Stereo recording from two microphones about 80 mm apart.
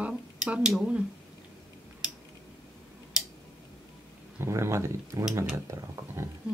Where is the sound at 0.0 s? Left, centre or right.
Centre.